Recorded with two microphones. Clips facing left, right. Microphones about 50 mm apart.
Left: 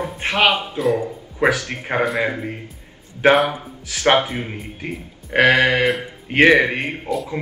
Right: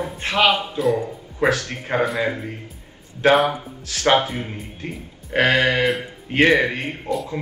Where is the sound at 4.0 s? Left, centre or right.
Left.